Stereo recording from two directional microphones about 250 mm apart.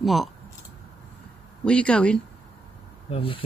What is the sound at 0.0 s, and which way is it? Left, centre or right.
Speech, centre.